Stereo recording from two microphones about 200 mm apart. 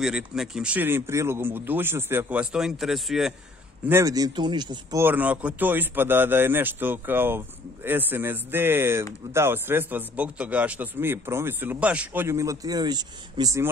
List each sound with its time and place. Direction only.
0.0 s a man's voice: 5° right (ahead or behind)
3.8 s speech: 15° right (ahead or behind)
5.0 s a man's voice: 10° right (ahead or behind)